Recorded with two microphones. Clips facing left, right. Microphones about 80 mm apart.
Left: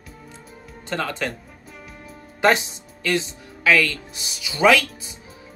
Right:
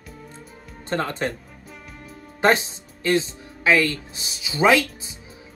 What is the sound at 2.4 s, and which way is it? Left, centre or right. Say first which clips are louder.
Speech: even; right.